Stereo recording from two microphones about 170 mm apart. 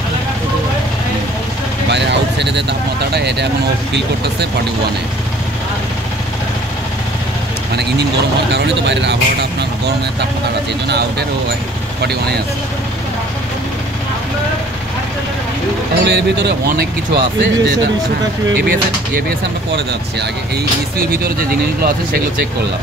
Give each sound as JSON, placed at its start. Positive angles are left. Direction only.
{"t": 1.9, "sound": "vehicle", "side_deg": -90}
{"t": 3.1, "sound": "speech", "side_deg": -80}
{"t": 8.5, "sound": "speech", "side_deg": -90}
{"t": 10.9, "sound": "speech", "side_deg": -75}
{"t": 16.0, "sound": "speech", "side_deg": -85}
{"t": 18.6, "sound": "speech", "side_deg": -70}
{"t": 21.1, "sound": "speech", "side_deg": -60}